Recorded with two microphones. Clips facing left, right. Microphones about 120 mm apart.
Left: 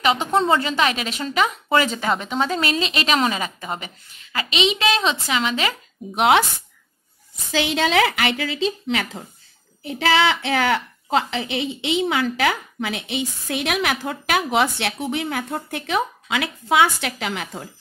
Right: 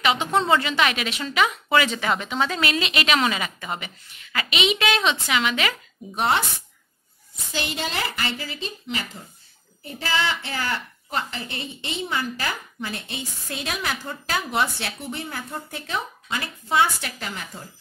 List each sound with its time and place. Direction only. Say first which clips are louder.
0.5 s a woman's voice: left 1 dB; 35° left (ahead or behind)
6.1 s speech: left 6 dB; 90° left
7.5 s a woman's voice: left 9 dB; 90° left; by 17.6 s 75° left (ahead or behind)